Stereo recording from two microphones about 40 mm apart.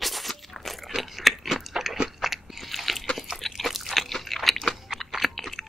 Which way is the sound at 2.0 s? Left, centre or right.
Centre.